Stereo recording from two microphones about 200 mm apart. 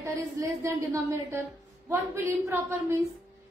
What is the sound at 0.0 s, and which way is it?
A woman's voice, 15° right (ahead or behind).